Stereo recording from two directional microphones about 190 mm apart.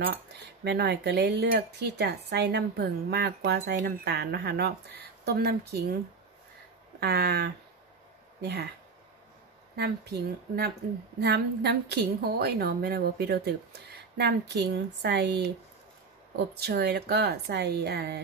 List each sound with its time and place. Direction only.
0.7 s speech: 60° right (ahead or behind)
7.0 s speech: 55° right (ahead or behind)
9.8 s speech: 60° right (ahead or behind)
16.5 s speech: 55° right (ahead or behind)